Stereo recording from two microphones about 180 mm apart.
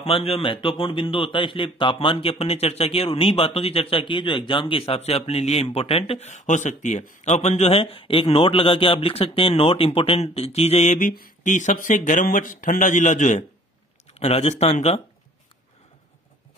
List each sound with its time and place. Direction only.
0.0 s a man's voice: 30° left (ahead or behind)